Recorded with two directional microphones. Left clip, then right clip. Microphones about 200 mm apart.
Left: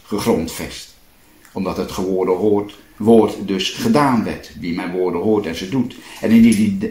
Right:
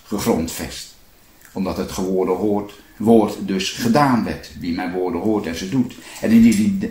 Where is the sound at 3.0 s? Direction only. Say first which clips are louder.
Left 2 dB; 25° left (ahead or behind).